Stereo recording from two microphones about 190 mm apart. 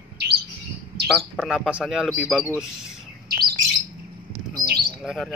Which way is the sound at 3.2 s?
50° right (ahead or behind).